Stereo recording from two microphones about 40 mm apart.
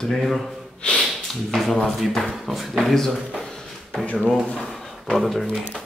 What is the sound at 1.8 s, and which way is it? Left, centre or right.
Speech, centre.